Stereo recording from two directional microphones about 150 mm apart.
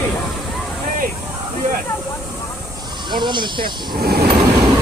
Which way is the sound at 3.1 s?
30° right (ahead or behind).